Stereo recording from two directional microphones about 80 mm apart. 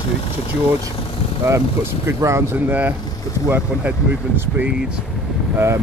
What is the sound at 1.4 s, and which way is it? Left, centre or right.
Speech, right.